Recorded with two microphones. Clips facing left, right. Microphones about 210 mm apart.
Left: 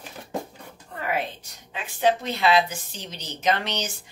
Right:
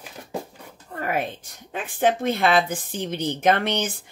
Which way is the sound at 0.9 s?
45° right (ahead or behind).